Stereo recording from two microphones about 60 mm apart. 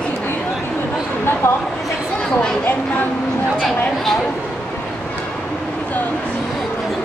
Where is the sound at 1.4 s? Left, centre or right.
Left.